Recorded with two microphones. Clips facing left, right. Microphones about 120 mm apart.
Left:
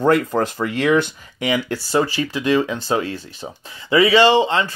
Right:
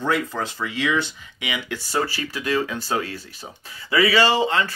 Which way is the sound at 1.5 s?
40° left (ahead or behind).